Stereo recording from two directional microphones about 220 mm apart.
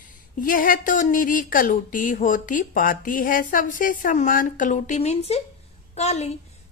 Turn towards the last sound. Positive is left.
turn(degrees=30)  # may be behind; listen again after turning